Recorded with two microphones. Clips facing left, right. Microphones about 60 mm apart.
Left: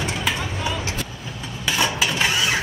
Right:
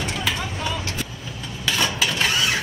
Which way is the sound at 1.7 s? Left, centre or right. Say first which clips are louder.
Left 1 dB; centre.